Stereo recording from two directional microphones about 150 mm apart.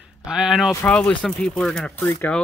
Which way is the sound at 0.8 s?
10° left (ahead or behind).